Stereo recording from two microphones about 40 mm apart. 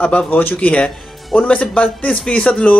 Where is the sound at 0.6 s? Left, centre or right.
Left.